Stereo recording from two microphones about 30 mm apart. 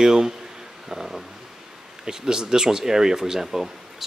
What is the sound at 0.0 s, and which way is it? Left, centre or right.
Speech, centre.